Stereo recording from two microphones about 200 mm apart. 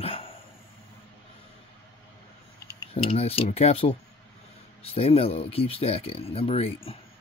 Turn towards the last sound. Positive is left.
turn(degrees=30)  # may be behind; listen again after turning